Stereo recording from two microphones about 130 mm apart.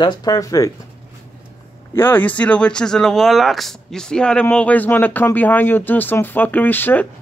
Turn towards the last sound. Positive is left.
turn(degrees=15)  # may be behind; listen again after turning